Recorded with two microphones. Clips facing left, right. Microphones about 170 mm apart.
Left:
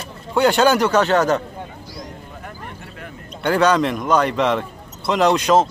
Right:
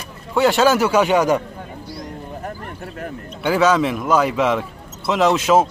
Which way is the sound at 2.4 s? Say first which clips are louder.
Right 5 dB; 45° right (ahead or behind).